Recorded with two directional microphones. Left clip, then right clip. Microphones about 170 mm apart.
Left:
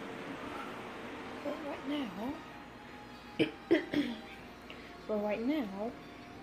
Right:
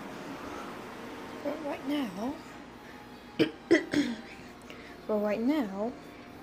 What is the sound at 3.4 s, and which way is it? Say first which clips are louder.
Cough: right 5 dB; 5° right (ahead or behind).